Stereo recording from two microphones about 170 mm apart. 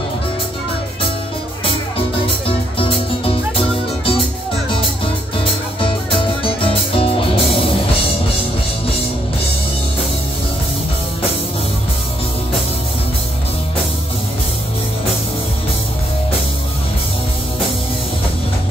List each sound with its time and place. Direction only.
2.4 s music: 30° left (ahead or behind)